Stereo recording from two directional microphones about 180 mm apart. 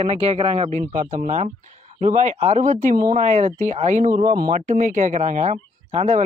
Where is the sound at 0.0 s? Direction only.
35° right (ahead or behind).